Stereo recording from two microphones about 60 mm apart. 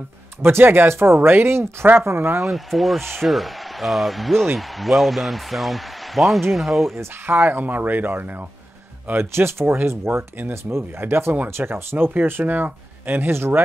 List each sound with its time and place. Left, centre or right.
0.4 s speech: right
2.4 s speech: centre
7.2 s speech: right